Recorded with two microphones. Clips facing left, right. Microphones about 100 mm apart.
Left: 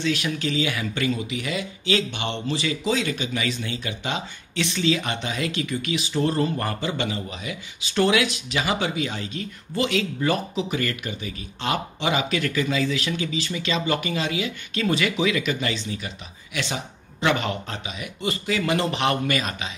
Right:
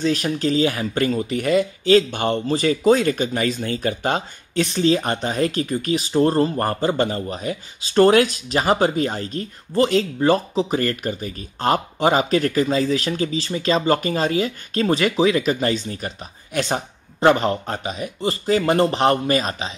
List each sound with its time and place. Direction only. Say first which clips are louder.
0.0 s speech: right 5 dB; 40° right (ahead or behind)